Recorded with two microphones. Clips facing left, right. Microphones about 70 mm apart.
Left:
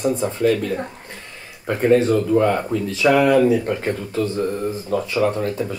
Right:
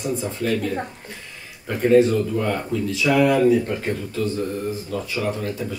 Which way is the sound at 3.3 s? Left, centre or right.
Left.